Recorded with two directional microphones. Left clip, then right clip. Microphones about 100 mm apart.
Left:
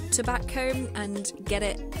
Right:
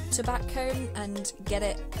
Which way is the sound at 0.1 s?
65° left (ahead or behind).